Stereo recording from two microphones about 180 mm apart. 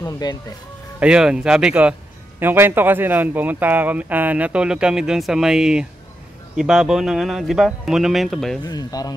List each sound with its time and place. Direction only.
0.0 s speech: 20° left (ahead or behind)
0.9 s speech: 5° right (ahead or behind)
8.6 s speech: 20° left (ahead or behind)